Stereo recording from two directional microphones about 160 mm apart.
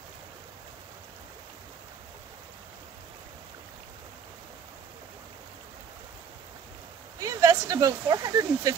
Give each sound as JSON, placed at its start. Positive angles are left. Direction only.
{"t": 7.2, "sound": "speech", "side_deg": -20}